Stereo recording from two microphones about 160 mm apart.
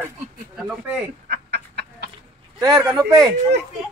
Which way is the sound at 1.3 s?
90° right.